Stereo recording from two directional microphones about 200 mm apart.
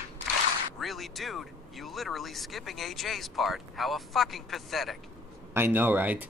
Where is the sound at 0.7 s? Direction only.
Centre (ahead or behind).